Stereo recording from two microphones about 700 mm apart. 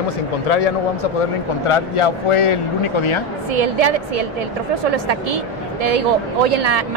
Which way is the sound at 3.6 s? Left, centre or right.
Right.